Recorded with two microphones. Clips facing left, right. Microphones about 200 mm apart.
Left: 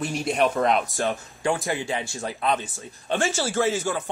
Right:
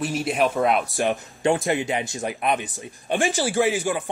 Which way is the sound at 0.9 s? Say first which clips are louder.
Right 3 dB; 15° right (ahead or behind).